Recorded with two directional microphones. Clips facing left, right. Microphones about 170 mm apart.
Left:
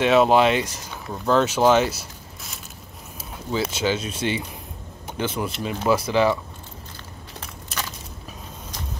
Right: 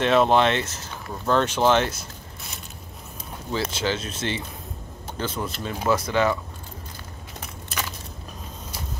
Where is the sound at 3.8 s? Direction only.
10° left (ahead or behind).